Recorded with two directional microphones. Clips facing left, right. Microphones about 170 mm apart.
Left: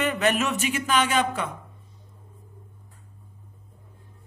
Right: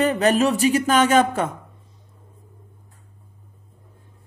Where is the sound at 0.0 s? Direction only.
35° right (ahead or behind).